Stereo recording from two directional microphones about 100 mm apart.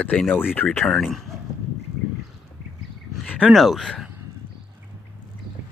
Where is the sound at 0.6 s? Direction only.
15° left (ahead or behind).